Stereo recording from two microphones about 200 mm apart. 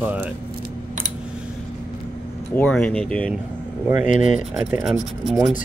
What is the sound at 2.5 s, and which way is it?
Speech, 5° left (ahead or behind).